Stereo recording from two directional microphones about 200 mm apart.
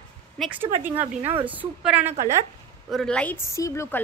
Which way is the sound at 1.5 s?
10° right (ahead or behind).